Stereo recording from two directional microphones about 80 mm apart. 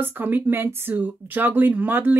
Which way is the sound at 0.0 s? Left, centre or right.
Right.